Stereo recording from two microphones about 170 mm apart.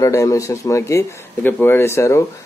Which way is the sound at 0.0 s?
20° left (ahead or behind).